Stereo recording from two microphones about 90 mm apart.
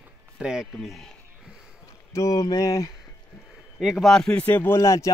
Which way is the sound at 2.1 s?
40° left (ahead or behind).